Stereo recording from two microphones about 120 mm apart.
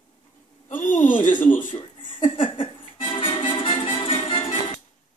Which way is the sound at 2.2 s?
45° left (ahead or behind).